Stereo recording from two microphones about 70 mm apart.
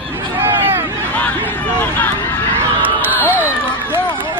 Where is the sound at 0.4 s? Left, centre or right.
Right.